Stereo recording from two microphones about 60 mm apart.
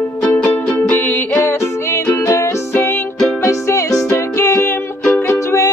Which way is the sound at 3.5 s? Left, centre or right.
Left.